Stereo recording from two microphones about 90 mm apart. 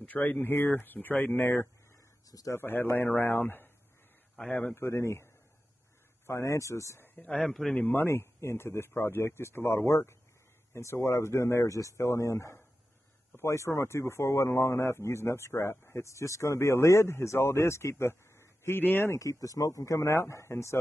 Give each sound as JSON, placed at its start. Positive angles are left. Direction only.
{"t": 0.0, "sound": "speech", "side_deg": 15}
{"t": 2.3, "sound": "speech", "side_deg": 35}
{"t": 2.6, "sound": "a man's voice", "side_deg": 25}
{"t": 4.7, "sound": "speech", "side_deg": 30}
{"t": 7.2, "sound": "a man's voice", "side_deg": 10}
{"t": 7.7, "sound": "speech", "side_deg": 20}
{"t": 19.1, "sound": "speech", "side_deg": 35}